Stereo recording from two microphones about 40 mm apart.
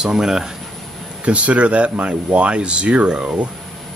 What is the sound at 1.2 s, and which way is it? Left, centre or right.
Speech, right.